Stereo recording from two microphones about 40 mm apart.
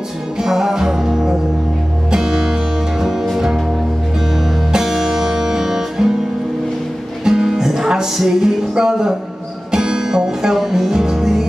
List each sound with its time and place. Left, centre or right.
0.4 s music: centre
4.7 s music: centre
7.2 s music: centre